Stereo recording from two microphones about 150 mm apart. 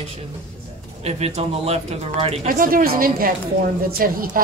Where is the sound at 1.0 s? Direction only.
45° right (ahead or behind).